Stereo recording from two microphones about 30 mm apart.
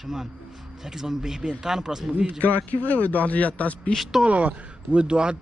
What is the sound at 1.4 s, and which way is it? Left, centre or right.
Speech, right.